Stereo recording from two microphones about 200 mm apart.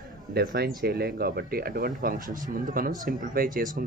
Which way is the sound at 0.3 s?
50° right (ahead or behind).